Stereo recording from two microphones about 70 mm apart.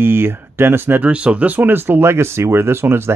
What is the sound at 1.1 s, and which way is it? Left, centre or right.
Speech, centre.